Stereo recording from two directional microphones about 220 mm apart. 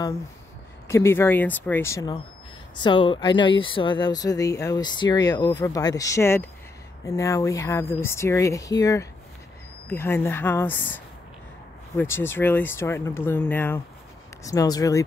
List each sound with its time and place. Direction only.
0.8 s speech: 10° left (ahead or behind)
12.0 s speech: 10° left (ahead or behind)